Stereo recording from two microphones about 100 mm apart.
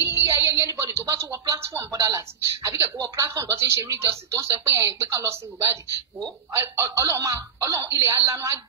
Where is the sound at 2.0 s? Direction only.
30° right (ahead or behind).